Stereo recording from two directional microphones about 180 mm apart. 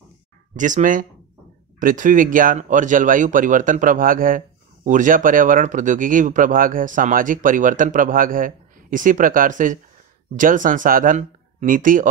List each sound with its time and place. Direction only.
0.6 s speech: 45° right (ahead or behind)